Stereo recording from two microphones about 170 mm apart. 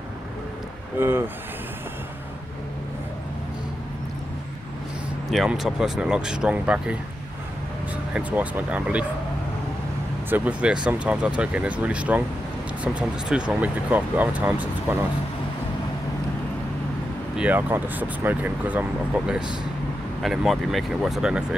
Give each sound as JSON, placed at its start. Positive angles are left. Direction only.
{"t": 0.9, "sound": "speech", "side_deg": -15}
{"t": 5.3, "sound": "speech", "side_deg": 0}
{"t": 10.3, "sound": "speech", "side_deg": -10}
{"t": 17.4, "sound": "speech", "side_deg": -10}